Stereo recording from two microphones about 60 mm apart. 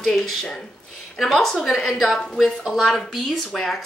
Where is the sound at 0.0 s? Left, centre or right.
Centre.